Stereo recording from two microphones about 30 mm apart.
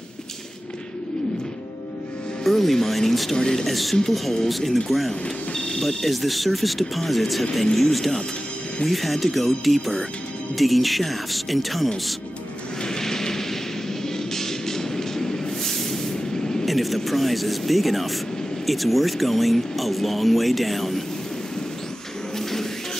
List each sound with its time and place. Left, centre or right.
2.4 s speech: centre
3.3 s speech: left
3.6 s speech: centre
12.8 s a sound: left
16.6 s speech: centre